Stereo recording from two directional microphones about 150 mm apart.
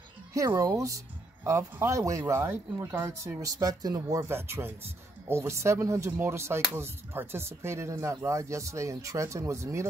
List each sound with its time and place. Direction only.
0.3 s speech: 20° right (ahead or behind)